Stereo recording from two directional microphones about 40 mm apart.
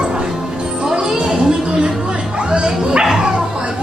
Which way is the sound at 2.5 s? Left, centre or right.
Right.